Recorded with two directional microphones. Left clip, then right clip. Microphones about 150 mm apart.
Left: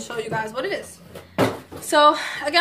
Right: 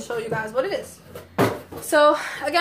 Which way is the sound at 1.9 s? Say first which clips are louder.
Left 1 dB; 10° left (ahead or behind).